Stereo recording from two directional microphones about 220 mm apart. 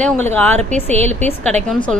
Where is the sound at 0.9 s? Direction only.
30° right (ahead or behind).